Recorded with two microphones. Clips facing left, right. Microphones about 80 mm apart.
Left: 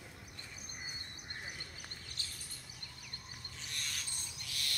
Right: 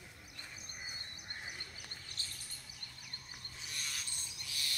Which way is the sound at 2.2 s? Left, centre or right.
Right.